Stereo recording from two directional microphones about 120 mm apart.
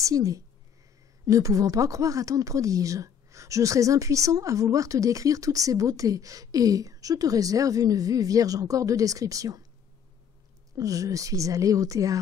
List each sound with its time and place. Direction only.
0.0 s speech: 25° right (ahead or behind)
10.8 s speech: 30° right (ahead or behind)